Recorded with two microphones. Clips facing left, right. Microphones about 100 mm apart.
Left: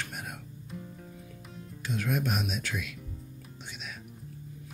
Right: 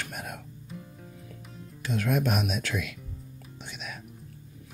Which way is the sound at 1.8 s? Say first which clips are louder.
Right 4 dB; 90° right.